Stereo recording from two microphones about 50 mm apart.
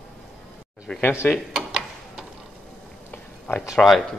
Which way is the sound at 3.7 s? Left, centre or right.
Centre.